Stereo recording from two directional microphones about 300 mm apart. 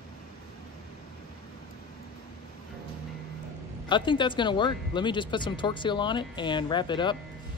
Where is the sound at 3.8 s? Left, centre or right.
Centre.